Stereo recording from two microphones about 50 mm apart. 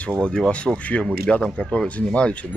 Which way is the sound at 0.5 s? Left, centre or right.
Left.